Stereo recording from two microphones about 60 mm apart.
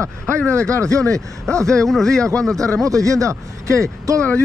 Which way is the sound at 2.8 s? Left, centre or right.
Right.